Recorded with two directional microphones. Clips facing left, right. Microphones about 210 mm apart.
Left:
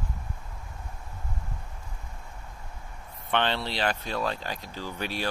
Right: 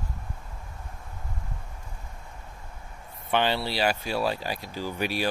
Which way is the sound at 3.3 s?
5° right (ahead or behind).